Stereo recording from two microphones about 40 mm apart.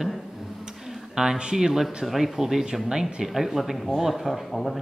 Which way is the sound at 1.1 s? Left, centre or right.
Centre.